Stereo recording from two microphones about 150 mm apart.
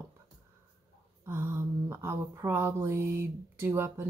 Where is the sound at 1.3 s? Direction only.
15° right (ahead or behind).